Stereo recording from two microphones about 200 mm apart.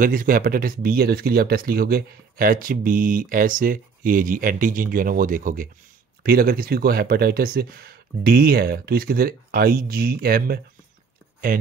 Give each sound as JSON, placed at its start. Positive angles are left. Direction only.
{"t": 0.0, "sound": "speech", "side_deg": -45}